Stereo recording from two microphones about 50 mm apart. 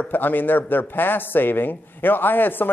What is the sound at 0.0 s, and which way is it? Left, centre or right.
Speech, left.